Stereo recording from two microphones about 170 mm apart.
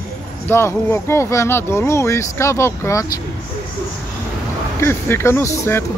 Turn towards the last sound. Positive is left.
turn(degrees=15)  # may be behind; listen again after turning